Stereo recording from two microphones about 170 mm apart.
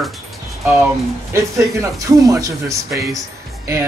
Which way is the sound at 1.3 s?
15° right (ahead or behind).